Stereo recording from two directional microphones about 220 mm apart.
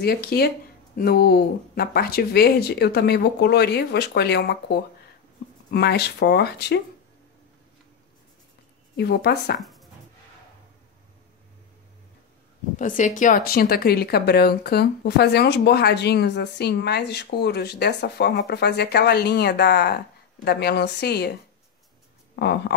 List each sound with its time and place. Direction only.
0.0 s a woman's voice: 45° left (ahead or behind)
8.9 s a woman's voice: 45° left (ahead or behind)
9.6 s writing: centre (ahead or behind)
12.7 s a woman's voice: 35° left (ahead or behind)
22.3 s a woman's voice: 50° left (ahead or behind)